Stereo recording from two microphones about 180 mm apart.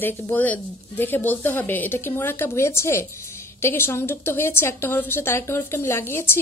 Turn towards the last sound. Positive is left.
turn(degrees=15)  # may be behind; listen again after turning